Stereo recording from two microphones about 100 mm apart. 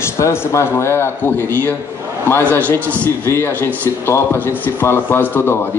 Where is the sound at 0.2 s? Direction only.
25° left (ahead or behind).